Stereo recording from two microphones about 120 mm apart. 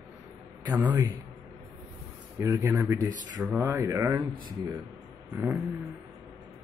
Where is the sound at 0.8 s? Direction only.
35° right (ahead or behind).